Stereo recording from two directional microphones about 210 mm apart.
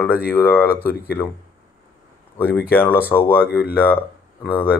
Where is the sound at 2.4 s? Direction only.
50° left (ahead or behind).